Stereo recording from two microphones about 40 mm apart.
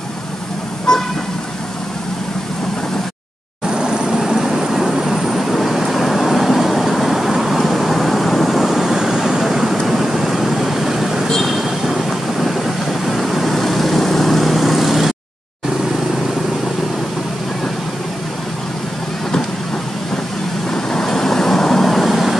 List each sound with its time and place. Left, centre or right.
0.9 s vehicle: centre
3.6 s vehicle: centre
20.7 s vehicle: centre